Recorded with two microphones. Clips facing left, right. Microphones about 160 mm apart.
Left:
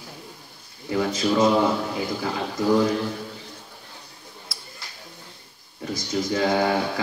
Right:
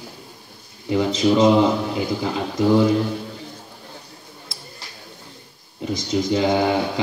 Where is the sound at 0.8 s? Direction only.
20° right (ahead or behind).